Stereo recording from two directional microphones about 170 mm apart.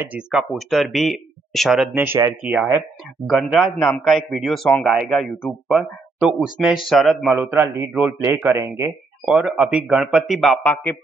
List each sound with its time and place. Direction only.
0.0 s a man's voice: 5° right (ahead or behind)
7.3 s a man's voice: 10° right (ahead or behind)
9.2 s speech: centre (ahead or behind)
10.6 s a man's voice: 10° left (ahead or behind)